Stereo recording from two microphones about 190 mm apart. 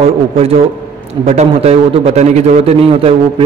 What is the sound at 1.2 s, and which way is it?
A man's voice, 35° right (ahead or behind).